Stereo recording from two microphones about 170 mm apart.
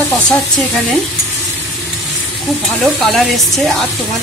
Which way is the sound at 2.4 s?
Centre (ahead or behind).